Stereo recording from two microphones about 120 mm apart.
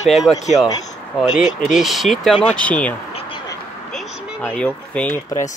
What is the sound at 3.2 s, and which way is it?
Duck, 50° left (ahead or behind).